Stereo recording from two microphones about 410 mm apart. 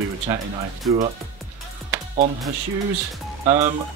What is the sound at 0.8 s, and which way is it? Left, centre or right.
Speech, centre.